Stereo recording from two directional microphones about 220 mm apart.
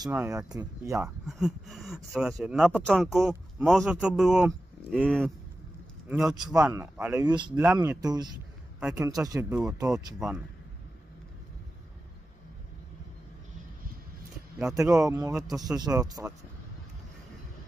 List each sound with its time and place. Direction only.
0.0 s speech: 10° right (ahead or behind)
7.2 s speech: 20° right (ahead or behind)
7.6 s speech: 10° right (ahead or behind)
8.7 s speech: 5° right (ahead or behind)
15.0 s speech: 15° right (ahead or behind)